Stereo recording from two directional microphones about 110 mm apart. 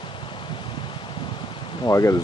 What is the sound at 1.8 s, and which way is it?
Speech, 25° left (ahead or behind).